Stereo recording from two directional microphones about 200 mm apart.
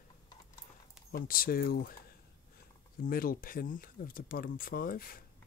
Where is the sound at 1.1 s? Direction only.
45° left (ahead or behind).